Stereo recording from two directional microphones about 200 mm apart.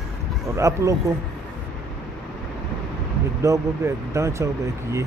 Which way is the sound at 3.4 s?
15° right (ahead or behind).